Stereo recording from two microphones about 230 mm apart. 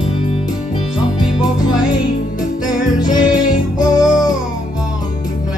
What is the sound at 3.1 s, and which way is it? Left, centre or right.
Music, centre.